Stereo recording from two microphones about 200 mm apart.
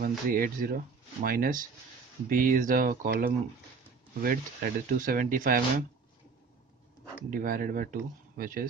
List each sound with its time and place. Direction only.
0.3 s speech: 45° right (ahead or behind)
7.2 s speech: 45° right (ahead or behind)